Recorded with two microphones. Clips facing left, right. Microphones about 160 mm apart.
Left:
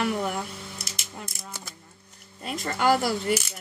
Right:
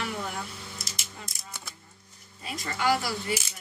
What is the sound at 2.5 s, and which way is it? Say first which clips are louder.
Speech: left 4 dB; 55° left (ahead or behind).